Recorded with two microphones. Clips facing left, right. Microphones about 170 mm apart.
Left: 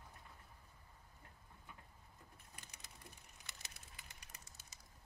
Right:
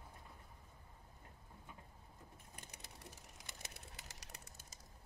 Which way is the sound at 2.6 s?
60° right (ahead or behind).